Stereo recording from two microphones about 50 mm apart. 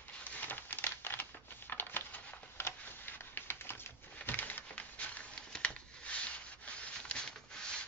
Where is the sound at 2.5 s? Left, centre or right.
Left.